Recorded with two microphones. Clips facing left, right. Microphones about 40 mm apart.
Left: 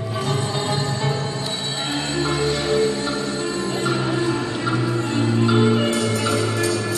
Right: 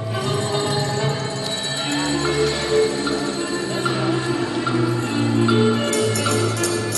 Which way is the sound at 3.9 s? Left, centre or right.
Centre.